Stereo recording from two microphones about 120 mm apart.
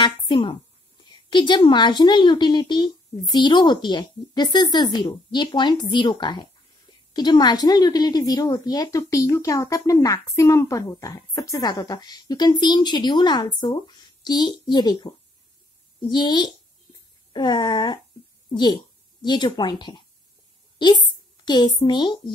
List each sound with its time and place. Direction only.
0.0 s a woman's voice: 45° left (ahead or behind)